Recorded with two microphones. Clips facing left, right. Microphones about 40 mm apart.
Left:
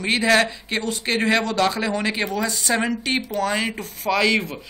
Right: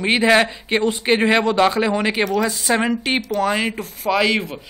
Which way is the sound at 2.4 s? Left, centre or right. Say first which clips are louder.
Right 3 dB; centre.